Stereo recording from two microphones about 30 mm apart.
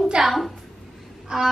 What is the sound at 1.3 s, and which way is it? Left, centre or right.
Speech, right.